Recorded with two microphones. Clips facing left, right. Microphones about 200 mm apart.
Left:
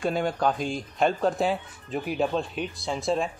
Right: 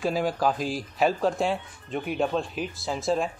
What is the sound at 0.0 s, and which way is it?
Speech, centre (ahead or behind).